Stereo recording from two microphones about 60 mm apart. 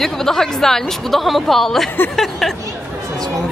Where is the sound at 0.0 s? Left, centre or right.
Centre.